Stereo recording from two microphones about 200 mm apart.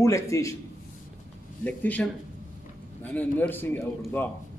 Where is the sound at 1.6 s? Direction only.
10° left (ahead or behind).